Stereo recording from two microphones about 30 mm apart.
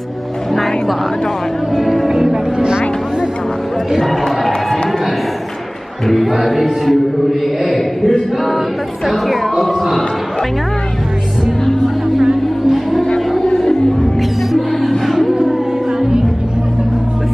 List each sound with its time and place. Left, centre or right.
0.5 s music: centre
2.0 s music: centre
6.0 s a sound: centre
6.3 s music: centre
7.6 s a sound: centre
12.2 s music: centre
14.5 s music: centre